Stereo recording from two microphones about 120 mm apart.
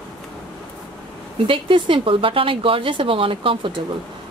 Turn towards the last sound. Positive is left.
turn(degrees=-45)  # may be behind; listen again after turning